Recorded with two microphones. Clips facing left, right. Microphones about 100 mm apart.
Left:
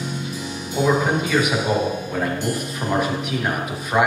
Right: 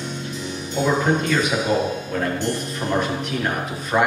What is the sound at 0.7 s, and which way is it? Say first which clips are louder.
Music: left 1 dB; 5° left (ahead or behind).